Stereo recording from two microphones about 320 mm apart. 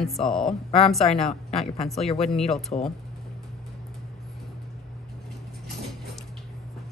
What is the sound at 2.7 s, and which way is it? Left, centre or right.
Speech, centre.